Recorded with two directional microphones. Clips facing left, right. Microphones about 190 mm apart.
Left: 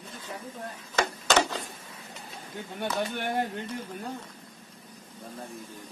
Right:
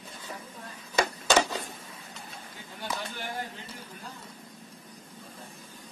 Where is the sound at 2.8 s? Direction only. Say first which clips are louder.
Left 6 dB; 60° left (ahead or behind).